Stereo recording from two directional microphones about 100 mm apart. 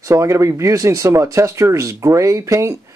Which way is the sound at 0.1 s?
30° right (ahead or behind).